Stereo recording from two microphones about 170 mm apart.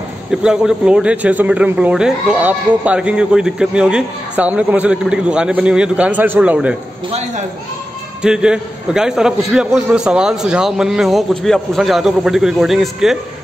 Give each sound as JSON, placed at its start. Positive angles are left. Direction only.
{"t": 0.3, "sound": "a man's voice", "side_deg": -5}
{"t": 7.1, "sound": "a man's voice", "side_deg": -40}
{"t": 8.2, "sound": "a man's voice", "side_deg": -5}